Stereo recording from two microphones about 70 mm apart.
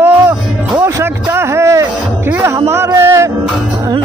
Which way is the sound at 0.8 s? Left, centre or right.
Right.